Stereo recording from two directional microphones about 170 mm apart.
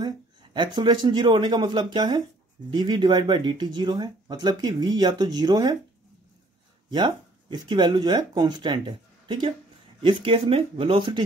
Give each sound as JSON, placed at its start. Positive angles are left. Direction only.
{"t": 0.0, "sound": "speech", "side_deg": -25}
{"t": 6.9, "sound": "speech", "side_deg": -25}